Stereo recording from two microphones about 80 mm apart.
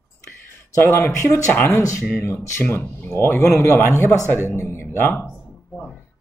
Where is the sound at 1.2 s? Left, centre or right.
Left.